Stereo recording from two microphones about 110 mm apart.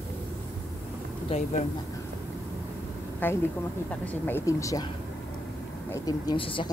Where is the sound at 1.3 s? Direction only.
60° left (ahead or behind).